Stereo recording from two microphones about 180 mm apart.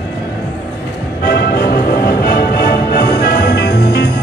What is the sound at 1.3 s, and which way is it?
Music, 60° left (ahead or behind).